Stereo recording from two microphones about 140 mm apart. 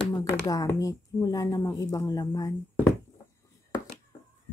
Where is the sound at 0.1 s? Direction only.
25° left (ahead or behind).